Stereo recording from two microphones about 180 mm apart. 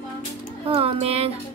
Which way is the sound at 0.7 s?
35° right (ahead or behind).